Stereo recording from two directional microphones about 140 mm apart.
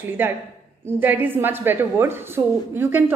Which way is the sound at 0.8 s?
15° right (ahead or behind).